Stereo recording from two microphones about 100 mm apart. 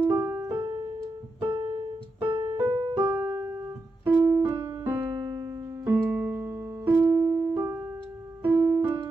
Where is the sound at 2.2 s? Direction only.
60° right (ahead or behind).